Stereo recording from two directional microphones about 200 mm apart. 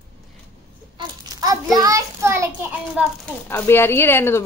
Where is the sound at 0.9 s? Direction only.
15° right (ahead or behind).